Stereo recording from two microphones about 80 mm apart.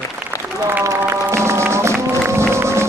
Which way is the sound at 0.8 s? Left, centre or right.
Right.